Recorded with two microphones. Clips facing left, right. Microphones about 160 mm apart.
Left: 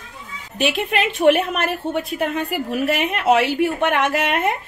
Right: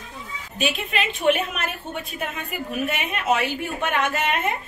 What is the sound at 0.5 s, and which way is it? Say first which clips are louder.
A woman's voice: left 5 dB; 70° left (ahead or behind).